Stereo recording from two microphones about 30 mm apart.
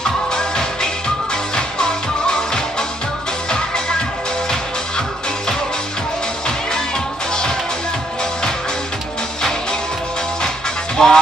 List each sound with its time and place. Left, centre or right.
0.0 s music: left
9.4 s music: left
11.0 s music: centre